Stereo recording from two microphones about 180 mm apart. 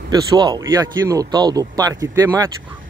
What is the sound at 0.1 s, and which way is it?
Speech, 20° right (ahead or behind).